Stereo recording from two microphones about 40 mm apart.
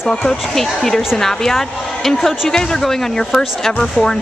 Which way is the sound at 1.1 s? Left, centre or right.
Centre.